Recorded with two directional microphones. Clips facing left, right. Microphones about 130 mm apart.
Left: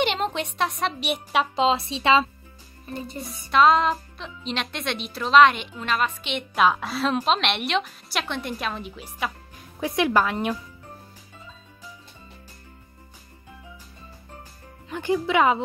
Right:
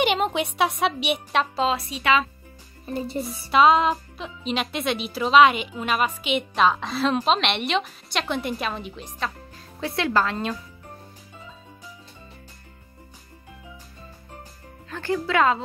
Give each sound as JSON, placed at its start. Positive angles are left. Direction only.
{"t": 0.0, "sound": "a woman's voice", "side_deg": -5}
{"t": 1.5, "sound": "a woman's voice", "side_deg": 20}
{"t": 3.4, "sound": "a woman's voice", "side_deg": -5}
{"t": 6.5, "sound": "a woman's voice", "side_deg": 5}
{"t": 14.9, "sound": "speech", "side_deg": 15}